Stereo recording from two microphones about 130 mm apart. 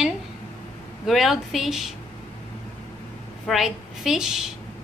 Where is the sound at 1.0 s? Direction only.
Centre (ahead or behind).